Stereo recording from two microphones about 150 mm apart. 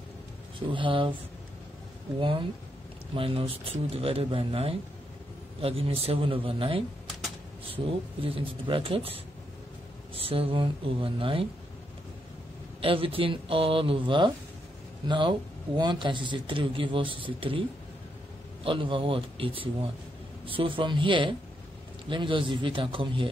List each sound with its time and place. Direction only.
0.6 s speech: 35° right (ahead or behind)
2.1 s speech: 35° right (ahead or behind)
12.8 s speech: 35° right (ahead or behind)